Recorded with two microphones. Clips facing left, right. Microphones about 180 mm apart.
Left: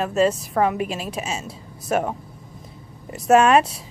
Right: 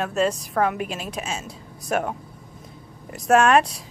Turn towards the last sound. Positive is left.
turn(degrees=5)  # may be behind; listen again after turning